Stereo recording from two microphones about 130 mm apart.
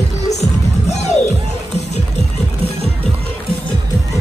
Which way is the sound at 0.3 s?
60° left (ahead or behind).